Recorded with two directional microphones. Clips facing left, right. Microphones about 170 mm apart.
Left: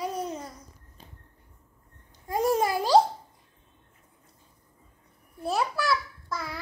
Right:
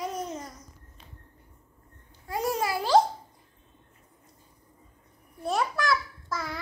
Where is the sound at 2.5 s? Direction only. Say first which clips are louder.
Even; 15° left (ahead or behind).